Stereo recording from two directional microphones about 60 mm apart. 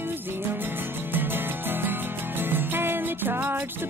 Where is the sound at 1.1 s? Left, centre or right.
Right.